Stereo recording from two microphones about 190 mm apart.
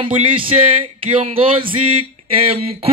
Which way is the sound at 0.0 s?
25° right (ahead or behind).